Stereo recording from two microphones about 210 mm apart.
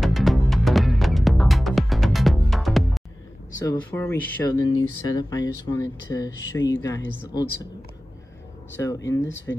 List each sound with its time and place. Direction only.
0.0 s music: centre (ahead or behind)
3.5 s speech: 15° left (ahead or behind)
8.7 s speech: 15° left (ahead or behind)